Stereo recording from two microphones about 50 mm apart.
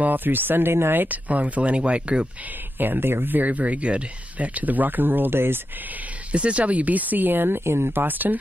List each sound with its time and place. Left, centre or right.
0.0 s speech: right
1.0 s speech: right
2.8 s speech: right
6.3 s speech: right
8.0 s speech: right